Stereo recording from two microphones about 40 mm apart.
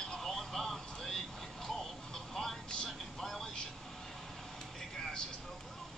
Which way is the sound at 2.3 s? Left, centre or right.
Centre.